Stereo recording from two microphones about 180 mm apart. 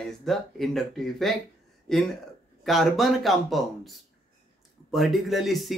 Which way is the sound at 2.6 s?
Centre (ahead or behind).